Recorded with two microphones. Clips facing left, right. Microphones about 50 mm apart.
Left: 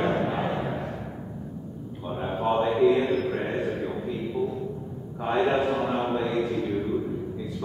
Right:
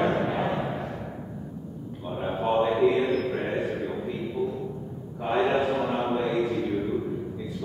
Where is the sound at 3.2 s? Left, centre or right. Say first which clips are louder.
Left 1 dB; centre.